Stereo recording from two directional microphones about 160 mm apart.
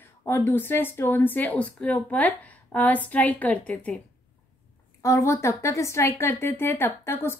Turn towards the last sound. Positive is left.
turn(degrees=15)  # may be behind; listen again after turning